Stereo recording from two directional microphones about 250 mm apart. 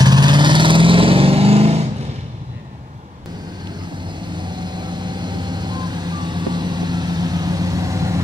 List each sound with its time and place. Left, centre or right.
0.0 s vehicle: centre
4.4 s vehicle: centre